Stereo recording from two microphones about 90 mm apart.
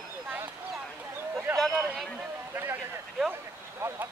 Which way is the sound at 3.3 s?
25° right (ahead or behind).